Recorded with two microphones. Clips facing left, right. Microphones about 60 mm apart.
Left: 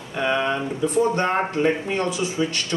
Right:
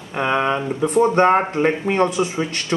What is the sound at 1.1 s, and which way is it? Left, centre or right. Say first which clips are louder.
Speech: right 6 dB; right.